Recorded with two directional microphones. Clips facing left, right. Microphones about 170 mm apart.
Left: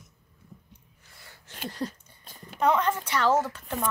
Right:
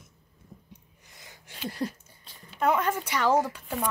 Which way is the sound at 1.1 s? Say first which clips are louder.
Right 1 dB; 15° right (ahead or behind).